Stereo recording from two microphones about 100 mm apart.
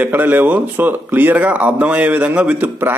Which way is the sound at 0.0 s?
20° right (ahead or behind).